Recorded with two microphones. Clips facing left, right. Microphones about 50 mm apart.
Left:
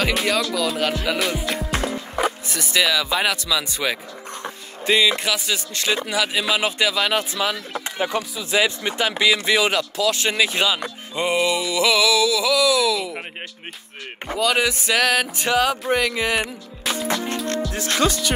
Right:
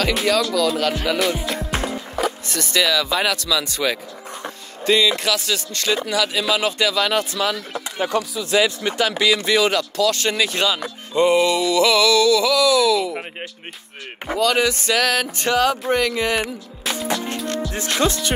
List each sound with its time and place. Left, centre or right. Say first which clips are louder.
0.1 s speech: right 2 dB; centre
2.1 s speech: even; centre
14.4 s speech: right 2 dB; centre
17.7 s music: right 1 dB; right